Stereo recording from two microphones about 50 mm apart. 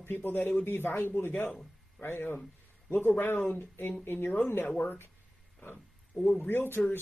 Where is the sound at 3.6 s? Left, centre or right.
Left.